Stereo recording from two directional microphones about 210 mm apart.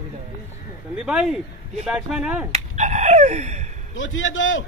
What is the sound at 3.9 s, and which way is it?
Speech, 65° left (ahead or behind).